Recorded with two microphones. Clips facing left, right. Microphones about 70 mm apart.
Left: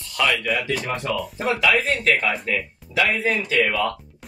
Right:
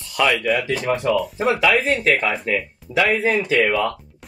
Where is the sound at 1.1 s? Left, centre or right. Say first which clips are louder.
Right 5 dB; centre.